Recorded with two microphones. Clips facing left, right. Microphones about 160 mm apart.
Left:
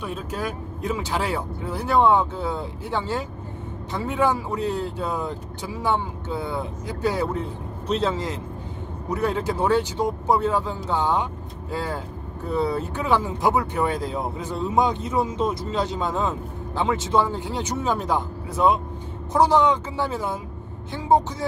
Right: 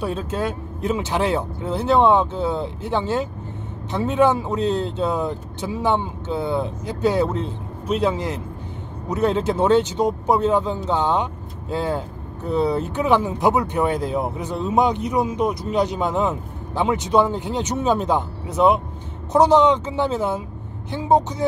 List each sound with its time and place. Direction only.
0.0 s a man's voice: 25° right (ahead or behind)